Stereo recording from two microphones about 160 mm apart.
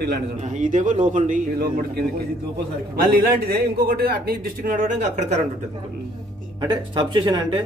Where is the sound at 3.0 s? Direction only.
75° right (ahead or behind); by 5.4 s 50° right (ahead or behind).